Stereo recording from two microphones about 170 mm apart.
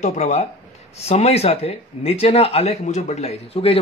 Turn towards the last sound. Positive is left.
turn(degrees=35)  # may be behind; listen again after turning